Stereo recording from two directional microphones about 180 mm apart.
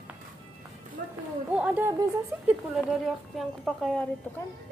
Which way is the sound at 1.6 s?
10° right (ahead or behind).